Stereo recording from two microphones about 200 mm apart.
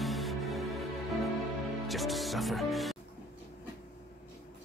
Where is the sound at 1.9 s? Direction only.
Centre (ahead or behind).